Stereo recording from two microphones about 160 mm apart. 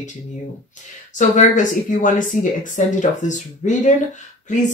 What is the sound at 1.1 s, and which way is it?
Speech, 50° left (ahead or behind).